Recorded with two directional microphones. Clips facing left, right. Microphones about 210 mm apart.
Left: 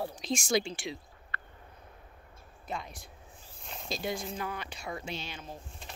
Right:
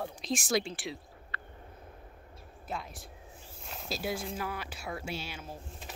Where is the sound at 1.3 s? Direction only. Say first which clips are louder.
Left 1 dB; 50° left (ahead or behind).